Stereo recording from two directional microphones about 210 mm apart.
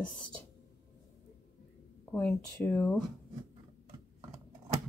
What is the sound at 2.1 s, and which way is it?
Speech, 10° left (ahead or behind).